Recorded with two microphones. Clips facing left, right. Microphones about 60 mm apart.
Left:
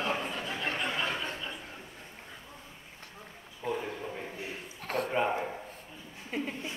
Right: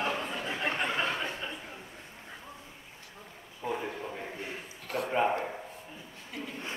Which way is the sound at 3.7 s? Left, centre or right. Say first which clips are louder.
Even; centre.